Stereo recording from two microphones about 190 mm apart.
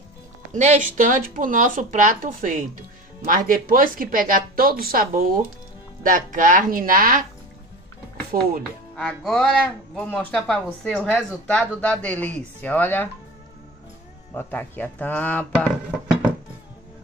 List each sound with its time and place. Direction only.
0.6 s a woman's voice: 40° right (ahead or behind)
8.3 s a woman's voice: 45° right (ahead or behind)
8.9 s music: 5° left (ahead or behind)
10.0 s speech: centre (ahead or behind)
14.3 s speech: 10° left (ahead or behind)